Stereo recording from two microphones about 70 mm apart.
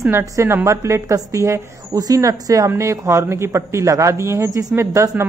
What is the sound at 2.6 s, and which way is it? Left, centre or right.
A man's voice, right.